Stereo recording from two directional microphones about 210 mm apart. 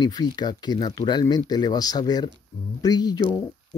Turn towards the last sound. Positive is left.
turn(degrees=20)  # may be behind; listen again after turning